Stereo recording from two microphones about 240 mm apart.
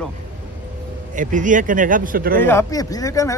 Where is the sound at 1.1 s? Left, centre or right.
Right.